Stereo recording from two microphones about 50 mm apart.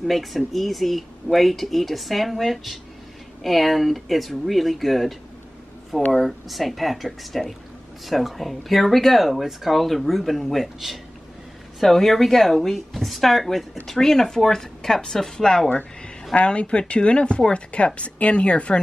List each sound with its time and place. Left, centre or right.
0.0 s speech: centre
6.1 s speech: centre
16.3 s a woman's voice: left